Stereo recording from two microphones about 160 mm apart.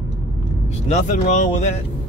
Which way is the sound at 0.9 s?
50° left (ahead or behind).